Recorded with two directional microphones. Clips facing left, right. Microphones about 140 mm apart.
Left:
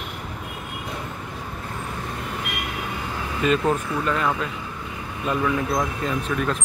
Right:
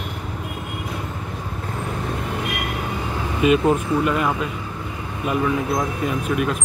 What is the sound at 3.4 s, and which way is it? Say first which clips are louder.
Speech: right 4 dB; 10° right (ahead or behind).